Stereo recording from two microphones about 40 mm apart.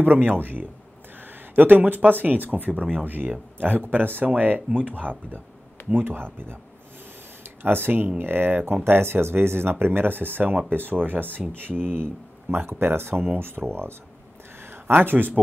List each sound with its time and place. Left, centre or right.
0.0 s speech: right
4.6 s speech: right
4.9 s speech: right
5.9 s speech: right
7.6 s speech: right
8.8 s speech: right
11.9 s speech: right
13.4 s speech: right
14.6 s a sound: right
15.0 s speech: right